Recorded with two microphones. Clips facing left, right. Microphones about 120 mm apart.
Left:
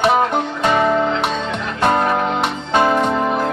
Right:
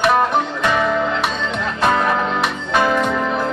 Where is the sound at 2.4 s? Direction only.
30° left (ahead or behind).